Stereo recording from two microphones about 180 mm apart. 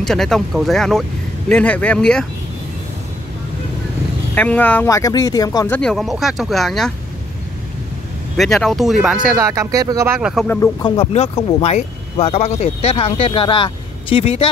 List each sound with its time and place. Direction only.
0.0 s speech: centre (ahead or behind)
4.4 s speech: 10° left (ahead or behind)
5.8 s speech: centre (ahead or behind)
8.4 s speech: centre (ahead or behind)
9.4 s speech: 20° right (ahead or behind)
10.2 s speech: centre (ahead or behind)
10.5 s speech: 15° left (ahead or behind)
11.6 s speech: 35° left (ahead or behind)